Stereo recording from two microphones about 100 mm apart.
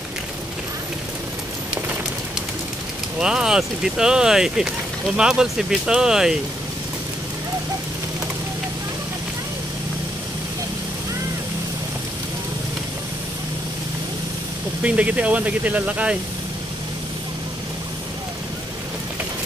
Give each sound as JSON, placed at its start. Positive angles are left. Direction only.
{"t": 3.2, "sound": "speech", "side_deg": -5}
{"t": 14.8, "sound": "speech", "side_deg": -15}